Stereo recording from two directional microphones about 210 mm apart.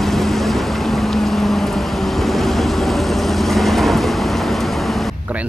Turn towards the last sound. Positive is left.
turn(degrees=-5)  # may be behind; listen again after turning